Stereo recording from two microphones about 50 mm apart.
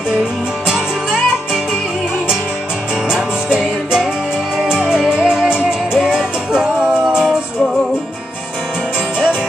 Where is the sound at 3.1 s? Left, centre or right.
Centre.